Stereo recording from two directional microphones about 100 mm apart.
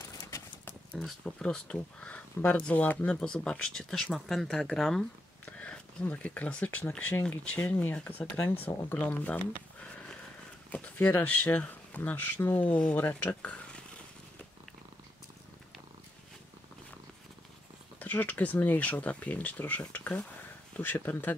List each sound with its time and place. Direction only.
0.9 s speech: 5° left (ahead or behind)
17.9 s speech: 15° left (ahead or behind)